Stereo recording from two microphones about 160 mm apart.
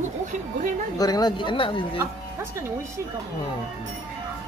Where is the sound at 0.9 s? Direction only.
25° left (ahead or behind).